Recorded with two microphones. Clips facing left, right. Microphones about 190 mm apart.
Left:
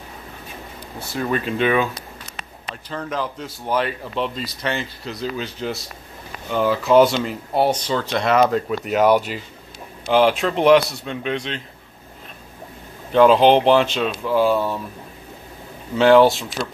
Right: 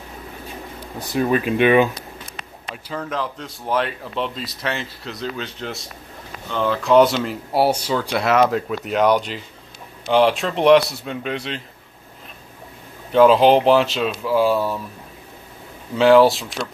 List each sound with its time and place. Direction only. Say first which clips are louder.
0.9 s speech: right 4 dB; 15° right (ahead or behind)
2.7 s speech: even; 5° right (ahead or behind)
13.1 s speech: even; centre (ahead or behind)
16.0 s speech: even; centre (ahead or behind)